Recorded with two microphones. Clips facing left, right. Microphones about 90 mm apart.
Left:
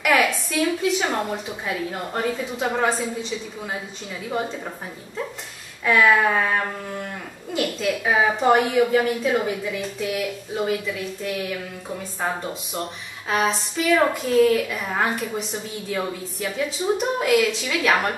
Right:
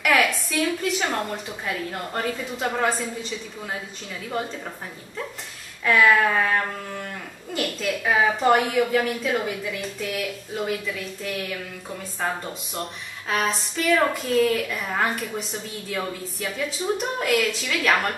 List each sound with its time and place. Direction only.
0.0 s speech: centre (ahead or behind)